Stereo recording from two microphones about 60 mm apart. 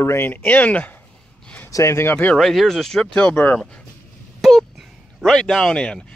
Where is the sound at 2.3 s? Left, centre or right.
Centre.